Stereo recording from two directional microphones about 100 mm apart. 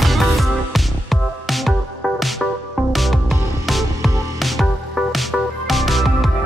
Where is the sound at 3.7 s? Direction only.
Centre (ahead or behind).